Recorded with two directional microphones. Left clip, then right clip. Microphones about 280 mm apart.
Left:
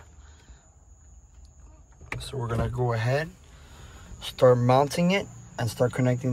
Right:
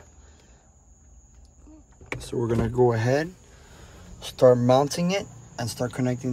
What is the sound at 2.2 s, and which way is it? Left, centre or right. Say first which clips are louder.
Speech: right 5 dB; right.